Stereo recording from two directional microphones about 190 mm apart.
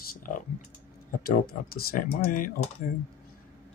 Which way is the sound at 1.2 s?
50° left (ahead or behind).